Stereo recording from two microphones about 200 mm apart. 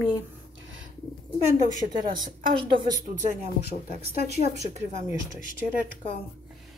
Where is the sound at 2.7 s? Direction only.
25° right (ahead or behind).